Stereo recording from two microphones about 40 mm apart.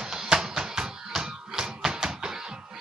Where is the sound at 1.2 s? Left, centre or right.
Centre.